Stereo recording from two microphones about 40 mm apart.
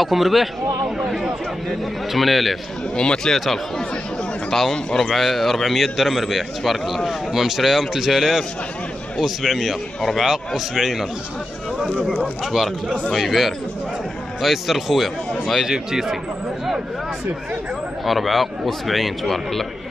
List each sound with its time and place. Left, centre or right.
0.0 s a man's voice: centre
0.8 s a man's voice: centre
1.7 s a man's voice: centre
3.0 s speech: left
4.9 s a man's voice: centre
13.1 s a man's voice: centre
18.0 s a man's voice: centre